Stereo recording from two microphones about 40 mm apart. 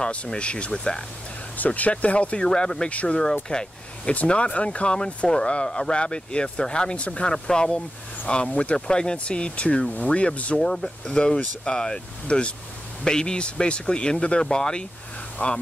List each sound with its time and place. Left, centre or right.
0.3 s speech: left
1.6 s speech: left
2.4 s speech: centre
2.9 s speech: left
3.4 s speech: left
4.1 s speech: left
8.7 s speech: left
15.4 s speech: left